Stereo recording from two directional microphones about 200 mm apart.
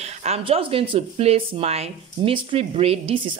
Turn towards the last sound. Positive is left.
turn(degrees=-30)  # may be behind; listen again after turning